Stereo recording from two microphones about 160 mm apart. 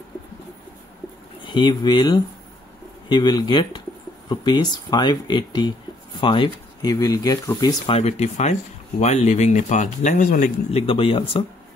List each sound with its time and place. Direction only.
1.4 s speech: 30° left (ahead or behind)
7.8 s speech: 40° left (ahead or behind)
10.7 s speech: 35° left (ahead or behind)